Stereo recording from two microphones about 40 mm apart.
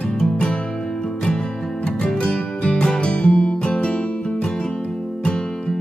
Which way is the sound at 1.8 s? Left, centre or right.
Left.